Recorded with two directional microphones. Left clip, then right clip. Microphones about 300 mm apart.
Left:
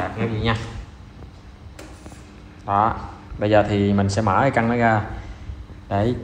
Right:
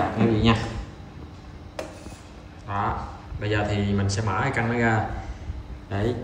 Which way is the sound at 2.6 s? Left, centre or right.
Centre.